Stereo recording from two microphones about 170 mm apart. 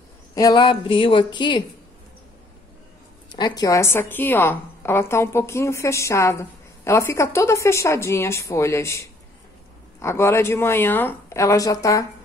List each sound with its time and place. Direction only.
0.3 s a woman's voice: 20° left (ahead or behind)
3.3 s a woman's voice: 25° left (ahead or behind)